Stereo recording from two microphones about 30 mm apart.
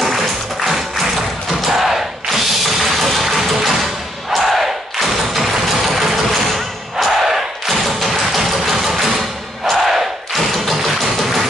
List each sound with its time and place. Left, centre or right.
1.8 s music: centre
4.3 s crowd: centre
5.9 s thump: centre
7.2 s a sound: centre
8.0 s music: centre